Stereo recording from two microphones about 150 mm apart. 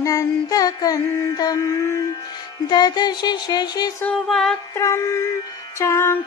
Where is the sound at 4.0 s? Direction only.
5° left (ahead or behind).